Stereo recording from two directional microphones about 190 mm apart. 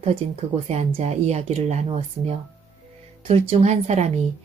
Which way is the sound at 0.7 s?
35° right (ahead or behind).